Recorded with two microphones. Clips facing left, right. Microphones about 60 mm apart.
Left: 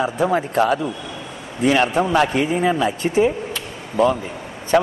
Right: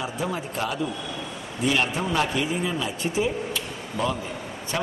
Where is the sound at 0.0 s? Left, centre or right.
Left.